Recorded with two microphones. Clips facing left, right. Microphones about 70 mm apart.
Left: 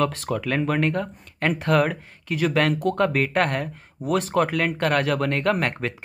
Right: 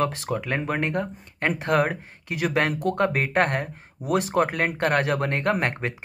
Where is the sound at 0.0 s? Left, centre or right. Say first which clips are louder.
Left 2 dB; right.